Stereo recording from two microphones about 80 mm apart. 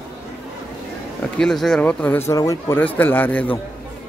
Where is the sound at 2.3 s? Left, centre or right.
Left.